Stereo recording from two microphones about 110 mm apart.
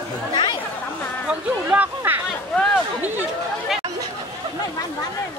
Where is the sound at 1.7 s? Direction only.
15° right (ahead or behind).